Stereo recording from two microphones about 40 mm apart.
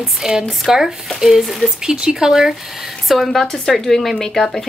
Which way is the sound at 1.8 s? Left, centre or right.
Centre.